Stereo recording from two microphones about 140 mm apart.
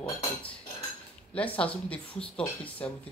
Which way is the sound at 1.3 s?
10° left (ahead or behind).